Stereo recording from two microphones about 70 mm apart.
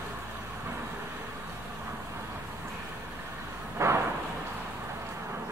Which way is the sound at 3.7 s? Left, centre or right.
Right.